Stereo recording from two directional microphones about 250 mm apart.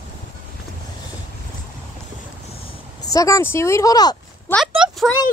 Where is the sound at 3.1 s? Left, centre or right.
Centre.